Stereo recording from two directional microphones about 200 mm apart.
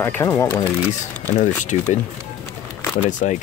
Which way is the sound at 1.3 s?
40° left (ahead or behind).